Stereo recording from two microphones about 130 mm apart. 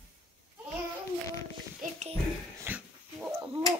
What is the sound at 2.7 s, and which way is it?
Dog, 15° right (ahead or behind).